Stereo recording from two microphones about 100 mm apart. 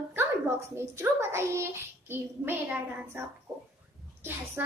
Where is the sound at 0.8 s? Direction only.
25° right (ahead or behind).